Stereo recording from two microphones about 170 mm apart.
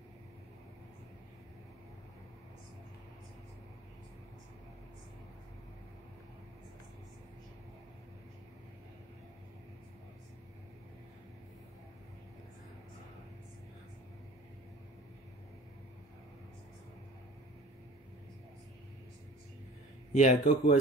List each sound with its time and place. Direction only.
20.1 s speech: 45° left (ahead or behind)